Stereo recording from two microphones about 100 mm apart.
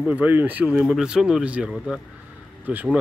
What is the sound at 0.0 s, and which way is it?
Speech, 15° right (ahead or behind).